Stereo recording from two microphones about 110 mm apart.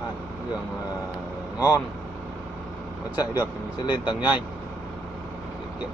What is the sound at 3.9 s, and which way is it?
Speech, 45° left (ahead or behind).